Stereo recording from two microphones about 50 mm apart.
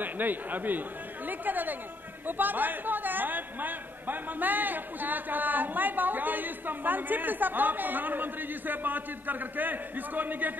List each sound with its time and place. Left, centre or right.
0.0 s chatter: right
2.2 s a man's voice: right